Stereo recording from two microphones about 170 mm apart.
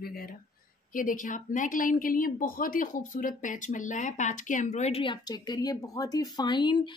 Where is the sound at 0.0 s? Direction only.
60° left (ahead or behind).